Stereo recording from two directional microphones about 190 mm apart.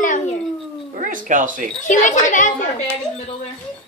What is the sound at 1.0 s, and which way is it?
Speech, 45° right (ahead or behind).